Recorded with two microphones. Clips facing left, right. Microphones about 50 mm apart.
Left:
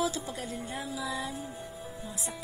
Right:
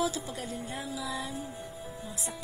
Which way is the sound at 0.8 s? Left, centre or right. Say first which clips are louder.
Left 1 dB; left.